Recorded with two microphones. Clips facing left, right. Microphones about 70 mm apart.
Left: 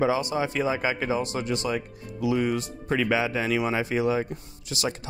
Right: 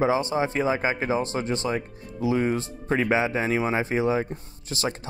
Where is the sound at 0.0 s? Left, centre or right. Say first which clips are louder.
Right 1 dB; right.